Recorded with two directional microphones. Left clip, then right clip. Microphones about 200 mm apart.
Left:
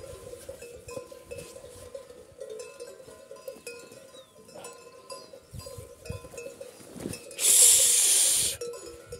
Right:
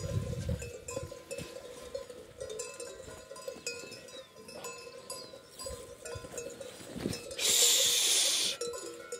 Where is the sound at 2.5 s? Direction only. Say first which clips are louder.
Left 1 dB; 60° right (ahead or behind).